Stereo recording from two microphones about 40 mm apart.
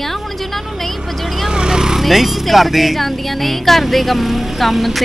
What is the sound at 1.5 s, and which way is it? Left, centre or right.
Vehicle, centre.